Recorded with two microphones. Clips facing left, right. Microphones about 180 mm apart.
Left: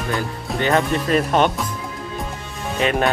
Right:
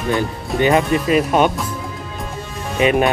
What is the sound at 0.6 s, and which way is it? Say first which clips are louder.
Speech: right 4 dB; 15° right (ahead or behind).